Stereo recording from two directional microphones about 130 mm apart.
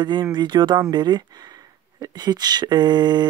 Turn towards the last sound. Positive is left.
turn(degrees=-35)  # may be behind; listen again after turning